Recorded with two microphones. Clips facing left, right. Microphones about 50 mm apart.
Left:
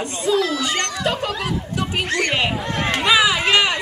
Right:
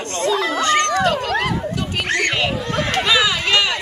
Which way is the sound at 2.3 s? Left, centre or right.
Centre.